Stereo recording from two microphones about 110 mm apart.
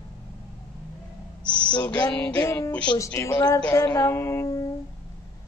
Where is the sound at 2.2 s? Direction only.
10° left (ahead or behind).